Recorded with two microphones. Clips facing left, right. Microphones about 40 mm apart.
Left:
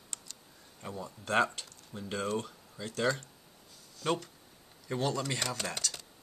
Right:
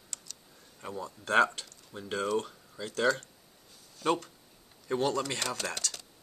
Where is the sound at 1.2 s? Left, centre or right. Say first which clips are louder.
Right 4 dB; centre.